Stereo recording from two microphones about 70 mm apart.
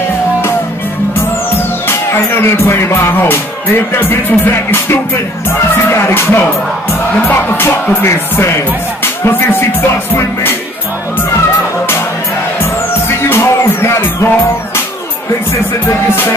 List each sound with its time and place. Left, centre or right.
1.9 s music: left
13.2 s music: left